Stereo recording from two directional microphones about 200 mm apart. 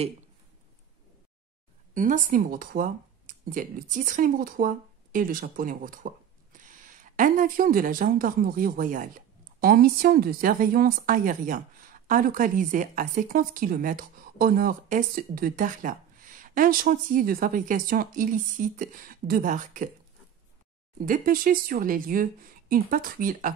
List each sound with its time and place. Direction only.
2.0 s a woman's voice: 40° right (ahead or behind)
21.0 s a woman's voice: 45° right (ahead or behind)